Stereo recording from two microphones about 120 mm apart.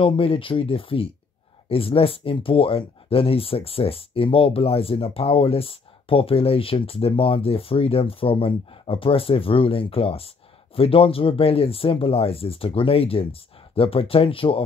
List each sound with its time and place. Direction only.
0.0 s speech: 50° left (ahead or behind)